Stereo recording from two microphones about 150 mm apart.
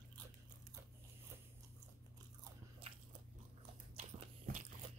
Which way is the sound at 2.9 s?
40° right (ahead or behind).